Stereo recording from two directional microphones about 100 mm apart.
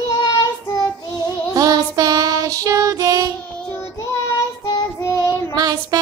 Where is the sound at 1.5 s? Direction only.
40° right (ahead or behind).